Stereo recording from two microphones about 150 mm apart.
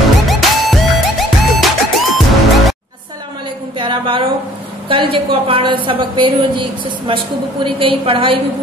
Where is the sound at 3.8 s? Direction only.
35° right (ahead or behind).